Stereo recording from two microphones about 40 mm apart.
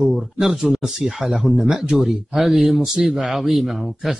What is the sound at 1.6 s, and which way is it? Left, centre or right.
Speech, centre.